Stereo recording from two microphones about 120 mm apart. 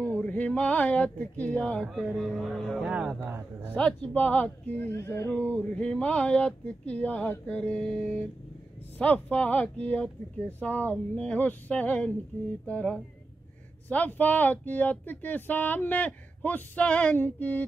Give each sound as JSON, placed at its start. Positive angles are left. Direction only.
{"t": 0.0, "sound": "speech", "side_deg": 10}
{"t": 3.3, "sound": "a man's voice", "side_deg": -15}
{"t": 3.7, "sound": "speech", "side_deg": 10}